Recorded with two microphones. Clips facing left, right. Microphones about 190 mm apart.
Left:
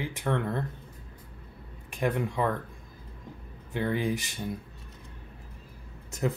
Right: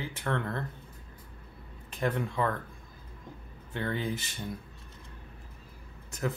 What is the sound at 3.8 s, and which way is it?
Speech, 15° left (ahead or behind).